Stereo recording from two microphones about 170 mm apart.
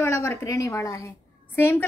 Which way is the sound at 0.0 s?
15° left (ahead or behind).